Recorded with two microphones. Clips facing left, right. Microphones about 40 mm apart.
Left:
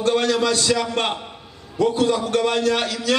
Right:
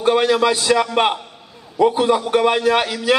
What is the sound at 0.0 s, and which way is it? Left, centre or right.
A man's voice, centre.